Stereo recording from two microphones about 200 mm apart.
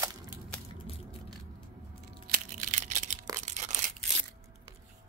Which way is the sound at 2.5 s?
35° right (ahead or behind).